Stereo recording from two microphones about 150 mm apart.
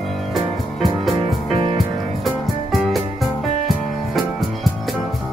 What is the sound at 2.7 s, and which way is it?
Music, centre (ahead or behind).